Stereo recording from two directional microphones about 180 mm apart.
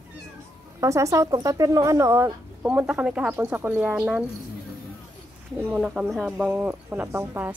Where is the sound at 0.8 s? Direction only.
15° right (ahead or behind).